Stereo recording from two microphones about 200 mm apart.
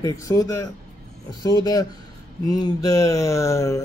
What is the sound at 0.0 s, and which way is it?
Speech, 15° left (ahead or behind).